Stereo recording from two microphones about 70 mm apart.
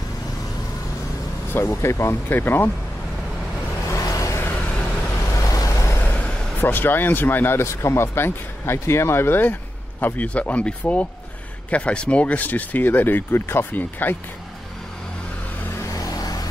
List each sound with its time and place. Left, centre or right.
1.5 s speech: left
3.9 s vehicle: left
5.9 s speech: left
15.9 s vehicle: left